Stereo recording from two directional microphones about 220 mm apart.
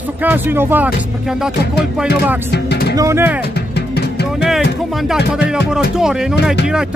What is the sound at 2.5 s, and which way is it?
Speech, 50° left (ahead or behind).